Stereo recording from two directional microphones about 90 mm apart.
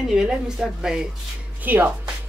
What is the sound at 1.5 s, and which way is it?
Speech, 20° right (ahead or behind).